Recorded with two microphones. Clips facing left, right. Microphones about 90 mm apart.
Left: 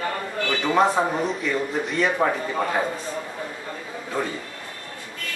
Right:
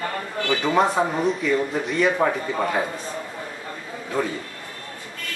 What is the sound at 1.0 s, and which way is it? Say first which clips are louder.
A man's voice: right 1 dB; centre (ahead or behind).